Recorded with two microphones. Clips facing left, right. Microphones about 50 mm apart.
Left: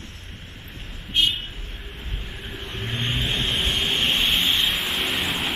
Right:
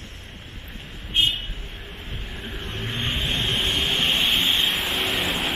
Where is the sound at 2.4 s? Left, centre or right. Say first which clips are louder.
Even; centre.